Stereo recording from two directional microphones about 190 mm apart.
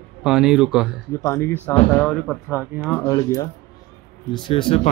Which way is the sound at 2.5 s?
10° right (ahead or behind).